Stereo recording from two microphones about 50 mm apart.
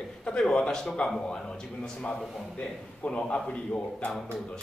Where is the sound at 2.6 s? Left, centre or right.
Left.